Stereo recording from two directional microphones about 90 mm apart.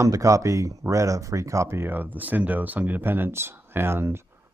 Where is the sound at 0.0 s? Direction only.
35° right (ahead or behind).